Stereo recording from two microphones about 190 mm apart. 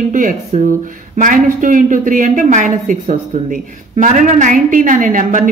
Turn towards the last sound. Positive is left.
turn(degrees=-45)  # may be behind; listen again after turning